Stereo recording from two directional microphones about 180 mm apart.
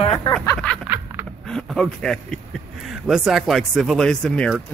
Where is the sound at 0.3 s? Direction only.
5° left (ahead or behind).